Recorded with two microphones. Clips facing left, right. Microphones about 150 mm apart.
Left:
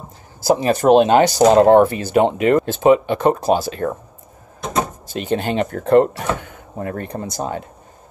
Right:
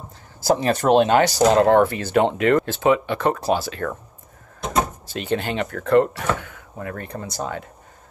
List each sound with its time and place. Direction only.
0.4 s speech: 15° left (ahead or behind)
5.3 s speech: 25° left (ahead or behind)
6.4 s door: 35° left (ahead or behind)
7.3 s speech: 25° left (ahead or behind)